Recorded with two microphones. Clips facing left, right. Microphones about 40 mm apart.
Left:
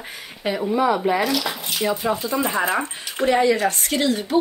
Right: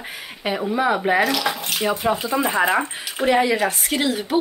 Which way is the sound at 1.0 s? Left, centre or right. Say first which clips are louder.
Right 2 dB; right.